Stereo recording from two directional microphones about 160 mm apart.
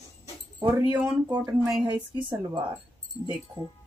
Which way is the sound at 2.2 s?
30° right (ahead or behind).